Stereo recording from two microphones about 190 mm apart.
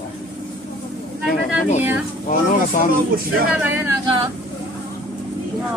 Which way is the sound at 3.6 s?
10° right (ahead or behind).